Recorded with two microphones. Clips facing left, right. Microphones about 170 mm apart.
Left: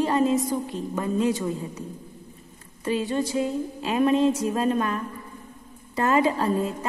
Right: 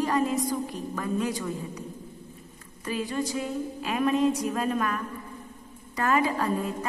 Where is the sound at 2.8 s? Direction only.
25° left (ahead or behind).